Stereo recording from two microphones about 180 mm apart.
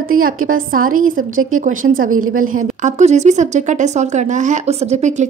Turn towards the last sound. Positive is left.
turn(degrees=-40)  # may be behind; listen again after turning